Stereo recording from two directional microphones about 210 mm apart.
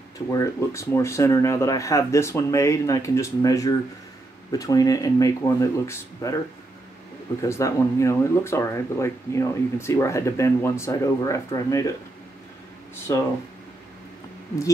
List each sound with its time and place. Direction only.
0.3 s speech: 15° left (ahead or behind)
7.4 s speech: 15° left (ahead or behind)
13.1 s speech: 15° left (ahead or behind)